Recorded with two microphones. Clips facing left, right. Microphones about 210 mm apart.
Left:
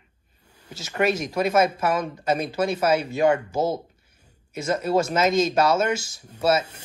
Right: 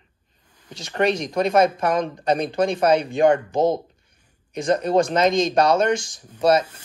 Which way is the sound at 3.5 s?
5° left (ahead or behind).